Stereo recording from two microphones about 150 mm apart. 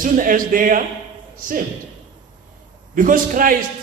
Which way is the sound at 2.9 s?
65° right (ahead or behind).